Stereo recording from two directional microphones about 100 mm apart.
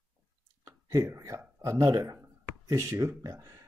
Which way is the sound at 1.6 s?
30° right (ahead or behind).